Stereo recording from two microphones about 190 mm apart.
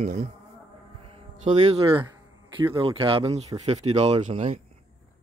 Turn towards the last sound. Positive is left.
turn(degrees=-35)  # may be behind; listen again after turning